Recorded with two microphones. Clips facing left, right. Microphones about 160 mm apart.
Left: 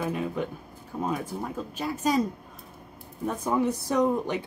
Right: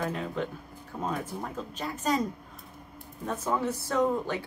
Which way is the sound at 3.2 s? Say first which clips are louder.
Left 4 dB; 15° left (ahead or behind).